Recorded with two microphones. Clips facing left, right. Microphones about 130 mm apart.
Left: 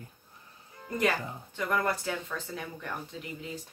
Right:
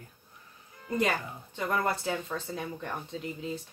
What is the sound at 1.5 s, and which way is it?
Speech, 25° right (ahead or behind).